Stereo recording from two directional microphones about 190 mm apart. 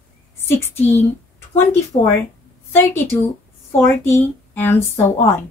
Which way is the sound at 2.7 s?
10° left (ahead or behind).